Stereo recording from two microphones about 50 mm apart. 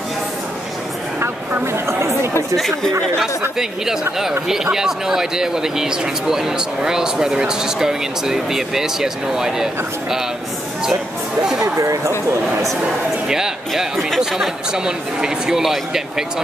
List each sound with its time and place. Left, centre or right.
1.2 s a sound: right
3.5 s speech: centre
11.7 s speech: right
13.3 s speech: centre
14.7 s speech: centre